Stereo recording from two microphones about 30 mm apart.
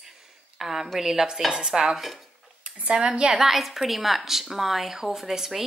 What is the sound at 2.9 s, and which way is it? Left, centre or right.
Speech, right.